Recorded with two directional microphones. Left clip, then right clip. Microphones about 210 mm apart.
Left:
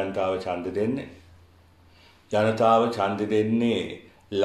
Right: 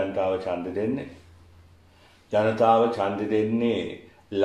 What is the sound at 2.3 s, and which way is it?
Speech, 45° left (ahead or behind).